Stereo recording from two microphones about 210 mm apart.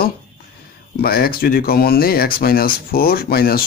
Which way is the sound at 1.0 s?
45° left (ahead or behind).